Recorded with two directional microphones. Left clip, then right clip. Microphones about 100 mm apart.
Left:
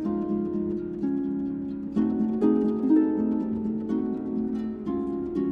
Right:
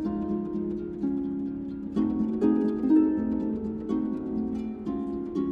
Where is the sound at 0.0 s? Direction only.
10° left (ahead or behind).